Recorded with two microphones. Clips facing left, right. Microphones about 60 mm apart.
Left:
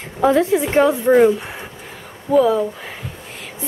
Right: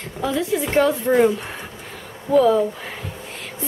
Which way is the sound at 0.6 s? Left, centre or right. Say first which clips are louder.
Left 3 dB; centre.